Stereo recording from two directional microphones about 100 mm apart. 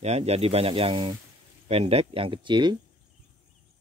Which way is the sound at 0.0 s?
90° right.